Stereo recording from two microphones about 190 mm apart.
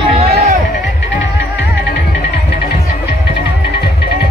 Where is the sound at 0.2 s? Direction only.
30° right (ahead or behind).